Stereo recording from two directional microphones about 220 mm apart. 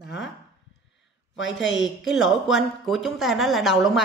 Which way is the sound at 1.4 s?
55° left (ahead or behind).